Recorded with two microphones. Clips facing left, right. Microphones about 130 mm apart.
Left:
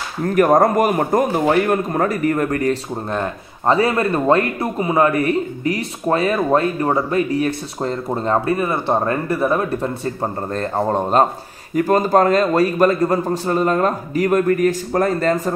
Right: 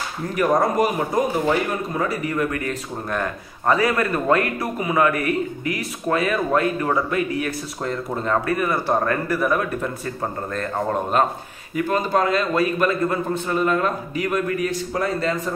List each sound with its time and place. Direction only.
0.2 s a man's voice: 50° left (ahead or behind)
3.1 s speech: 25° left (ahead or behind)
11.7 s a man's voice: 45° left (ahead or behind)